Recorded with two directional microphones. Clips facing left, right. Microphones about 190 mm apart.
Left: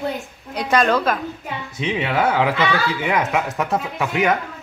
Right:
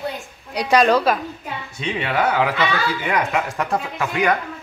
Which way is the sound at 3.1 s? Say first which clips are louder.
Left 1 dB; 5° left (ahead or behind).